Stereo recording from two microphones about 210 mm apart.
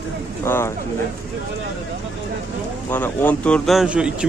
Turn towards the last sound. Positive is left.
turn(degrees=-5)  # may be behind; listen again after turning